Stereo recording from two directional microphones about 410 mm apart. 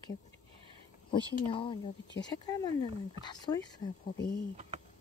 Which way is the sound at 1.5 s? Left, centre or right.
Centre.